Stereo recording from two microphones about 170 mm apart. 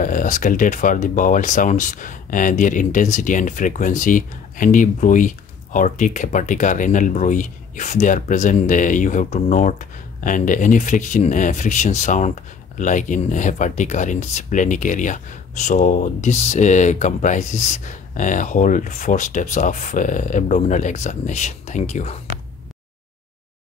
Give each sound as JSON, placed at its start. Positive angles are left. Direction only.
{"t": 0.0, "sound": "speech", "side_deg": 50}